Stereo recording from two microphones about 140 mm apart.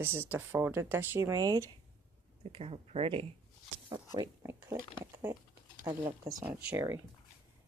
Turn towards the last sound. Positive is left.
turn(degrees=-15)  # may be behind; listen again after turning